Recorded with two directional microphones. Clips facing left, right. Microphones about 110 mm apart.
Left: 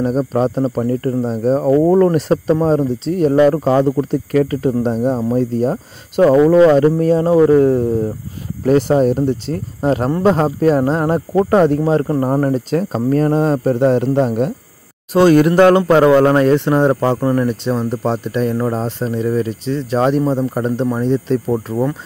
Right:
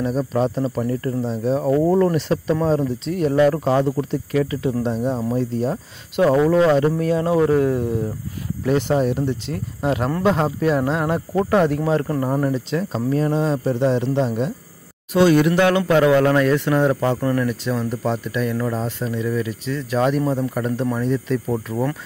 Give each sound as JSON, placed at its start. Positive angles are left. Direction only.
{"t": 0.0, "sound": "speech", "side_deg": 40}
{"t": 1.7, "sound": "speech", "side_deg": 30}